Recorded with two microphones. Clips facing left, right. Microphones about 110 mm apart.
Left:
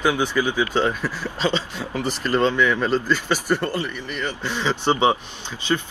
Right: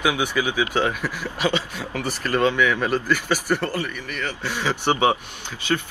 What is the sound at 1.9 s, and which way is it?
Speech, 15° left (ahead or behind).